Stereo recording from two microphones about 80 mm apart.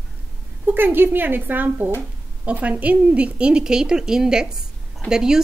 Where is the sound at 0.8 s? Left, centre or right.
Right; by 5.4 s centre.